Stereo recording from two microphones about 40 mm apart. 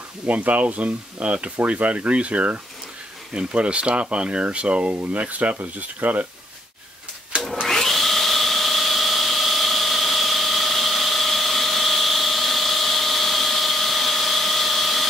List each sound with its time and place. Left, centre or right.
0.3 s speech: right
4.9 s speech: right
7.6 s tools: centre